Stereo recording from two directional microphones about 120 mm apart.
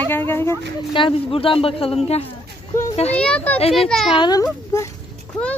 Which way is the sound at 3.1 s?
10° left (ahead or behind).